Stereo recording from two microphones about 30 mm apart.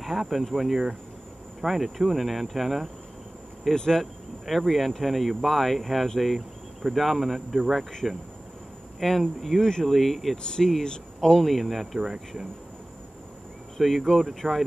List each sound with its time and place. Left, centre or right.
0.2 s cricket: centre
3.7 s speech: centre
4.0 s speech: centre
5.4 s cricket: centre
6.1 s speech: centre
8.0 s cricket: centre
10.3 s speech: left
11.4 s cricket: centre
12.0 s cricket: centre
13.7 s cricket: centre